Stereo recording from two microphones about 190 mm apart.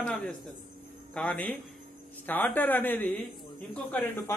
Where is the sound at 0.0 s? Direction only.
5° left (ahead or behind).